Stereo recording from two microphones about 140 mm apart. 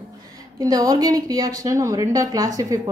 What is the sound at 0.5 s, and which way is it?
Speech, 25° right (ahead or behind).